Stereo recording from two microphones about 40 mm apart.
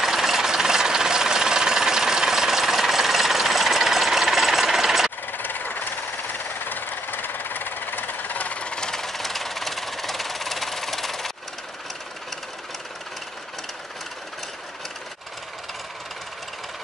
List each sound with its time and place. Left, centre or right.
0.0 s jackhammer: centre
5.3 s jackhammer: left; by 11.3 s centre